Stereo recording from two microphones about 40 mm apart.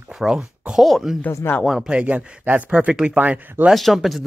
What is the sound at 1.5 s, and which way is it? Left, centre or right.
Speech, left.